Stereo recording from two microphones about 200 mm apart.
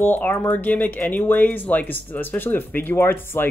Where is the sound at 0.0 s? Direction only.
10° left (ahead or behind).